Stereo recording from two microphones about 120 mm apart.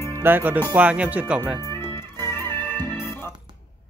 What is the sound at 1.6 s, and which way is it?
Music, 20° left (ahead or behind).